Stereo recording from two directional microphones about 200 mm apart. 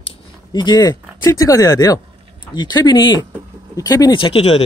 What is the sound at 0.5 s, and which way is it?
Speech, 20° left (ahead or behind).